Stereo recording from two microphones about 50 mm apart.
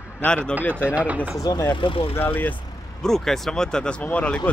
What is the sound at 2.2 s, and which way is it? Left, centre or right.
Speech, left.